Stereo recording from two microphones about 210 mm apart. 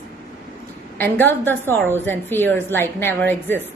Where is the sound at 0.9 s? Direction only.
10° left (ahead or behind).